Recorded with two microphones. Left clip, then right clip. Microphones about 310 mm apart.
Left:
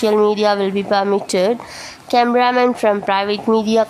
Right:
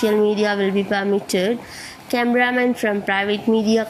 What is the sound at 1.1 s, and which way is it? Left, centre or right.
A woman's voice, left.